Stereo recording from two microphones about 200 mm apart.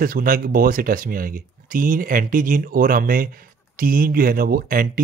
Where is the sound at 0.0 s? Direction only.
45° right (ahead or behind).